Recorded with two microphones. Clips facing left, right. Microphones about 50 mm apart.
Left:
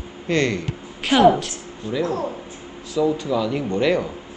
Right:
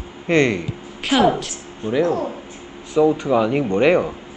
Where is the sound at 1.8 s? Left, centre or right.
Right.